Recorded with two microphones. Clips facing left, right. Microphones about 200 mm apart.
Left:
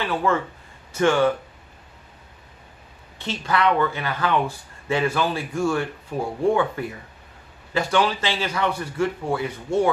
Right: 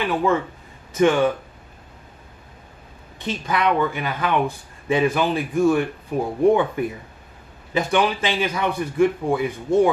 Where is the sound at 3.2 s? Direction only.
15° right (ahead or behind).